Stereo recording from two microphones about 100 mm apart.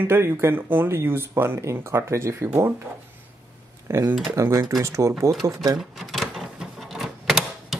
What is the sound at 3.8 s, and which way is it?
Speech, 30° right (ahead or behind).